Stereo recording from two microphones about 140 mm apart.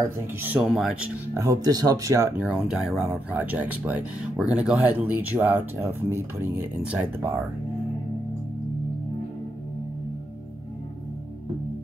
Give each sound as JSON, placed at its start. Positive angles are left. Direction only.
{"t": 0.4, "sound": "speech", "side_deg": -15}
{"t": 1.3, "sound": "speech", "side_deg": -25}
{"t": 2.4, "sound": "speech", "side_deg": -5}